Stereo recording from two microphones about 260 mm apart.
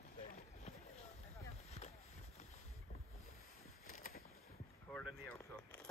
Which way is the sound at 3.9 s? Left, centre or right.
Left.